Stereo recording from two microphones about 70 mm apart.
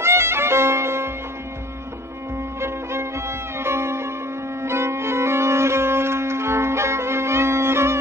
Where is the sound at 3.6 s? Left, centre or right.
Right.